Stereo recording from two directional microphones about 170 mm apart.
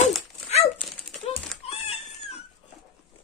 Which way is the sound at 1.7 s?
35° left (ahead or behind).